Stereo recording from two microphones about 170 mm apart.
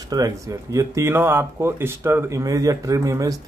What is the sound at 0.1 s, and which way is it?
Speech, 20° right (ahead or behind).